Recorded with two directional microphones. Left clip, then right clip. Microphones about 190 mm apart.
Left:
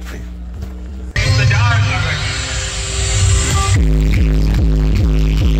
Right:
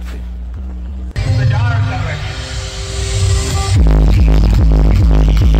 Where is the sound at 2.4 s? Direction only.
55° right (ahead or behind).